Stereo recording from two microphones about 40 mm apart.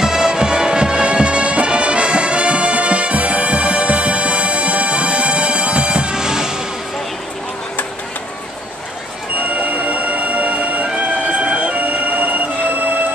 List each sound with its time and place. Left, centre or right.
0.0 s music: centre
9.6 s music: right